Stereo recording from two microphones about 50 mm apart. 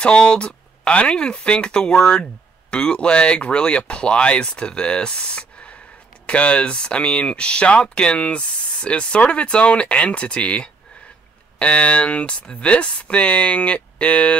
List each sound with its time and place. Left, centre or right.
0.0 s speech: centre